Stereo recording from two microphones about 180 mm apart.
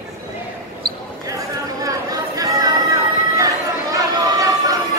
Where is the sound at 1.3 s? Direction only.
20° right (ahead or behind).